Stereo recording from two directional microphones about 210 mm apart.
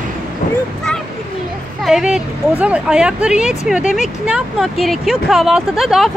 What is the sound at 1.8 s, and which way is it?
Speech, 5° right (ahead or behind).